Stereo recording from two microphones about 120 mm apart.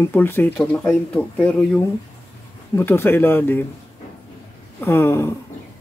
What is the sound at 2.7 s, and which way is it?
Speech, 20° left (ahead or behind).